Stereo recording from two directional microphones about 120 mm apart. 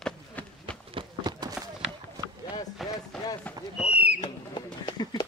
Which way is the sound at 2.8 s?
Centre (ahead or behind).